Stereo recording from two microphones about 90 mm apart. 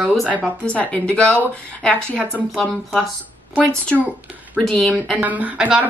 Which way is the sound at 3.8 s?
15° left (ahead or behind).